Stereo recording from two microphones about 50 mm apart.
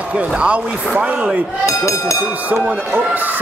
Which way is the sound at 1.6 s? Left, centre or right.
Left.